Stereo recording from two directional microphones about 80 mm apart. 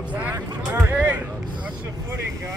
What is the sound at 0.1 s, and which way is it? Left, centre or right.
Vehicle, centre.